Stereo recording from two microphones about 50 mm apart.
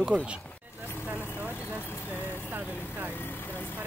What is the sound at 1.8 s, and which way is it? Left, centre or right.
Speech, left.